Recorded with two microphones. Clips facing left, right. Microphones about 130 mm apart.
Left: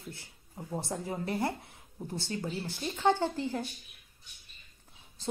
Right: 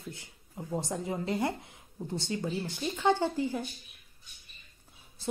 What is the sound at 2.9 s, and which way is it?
Speech, 15° left (ahead or behind).